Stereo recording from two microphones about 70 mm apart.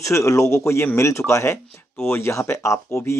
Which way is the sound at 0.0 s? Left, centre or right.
Left.